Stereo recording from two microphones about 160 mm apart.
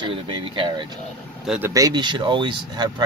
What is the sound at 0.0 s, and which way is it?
Speech, 30° right (ahead or behind).